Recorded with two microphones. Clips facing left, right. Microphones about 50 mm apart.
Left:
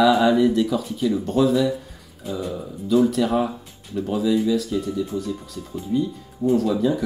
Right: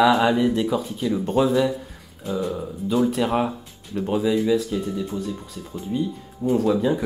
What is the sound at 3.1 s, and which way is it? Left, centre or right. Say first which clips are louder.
Speech: left 1 dB; right.